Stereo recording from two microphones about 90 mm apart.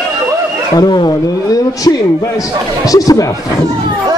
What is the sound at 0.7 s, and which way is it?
Speech, 50° left (ahead or behind).